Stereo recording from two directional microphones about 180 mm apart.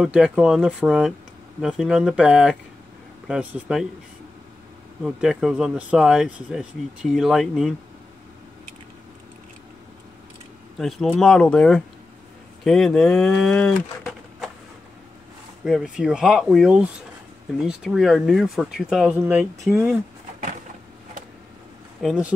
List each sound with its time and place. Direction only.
0.0 s speech: 5° right (ahead or behind)
5.0 s speech: centre (ahead or behind)
10.8 s speech: centre (ahead or behind)
15.6 s speech: centre (ahead or behind)
22.0 s speech: 5° right (ahead or behind)